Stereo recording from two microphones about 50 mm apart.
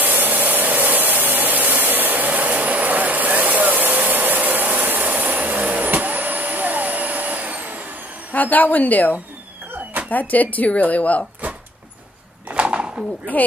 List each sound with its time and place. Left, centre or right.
0.0 s a sound: right
8.3 s speech: left
12.4 s bird: right